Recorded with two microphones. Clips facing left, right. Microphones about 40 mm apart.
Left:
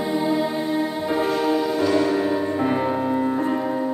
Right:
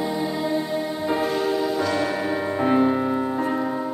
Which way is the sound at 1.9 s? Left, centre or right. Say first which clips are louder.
Left 4 dB; centre.